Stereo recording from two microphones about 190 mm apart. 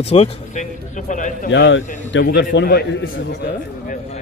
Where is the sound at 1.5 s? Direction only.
85° left.